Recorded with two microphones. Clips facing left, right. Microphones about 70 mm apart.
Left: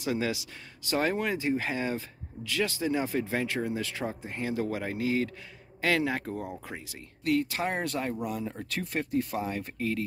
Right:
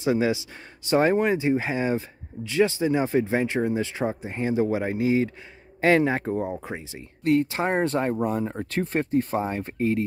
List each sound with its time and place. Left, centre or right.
0.0 s speech: right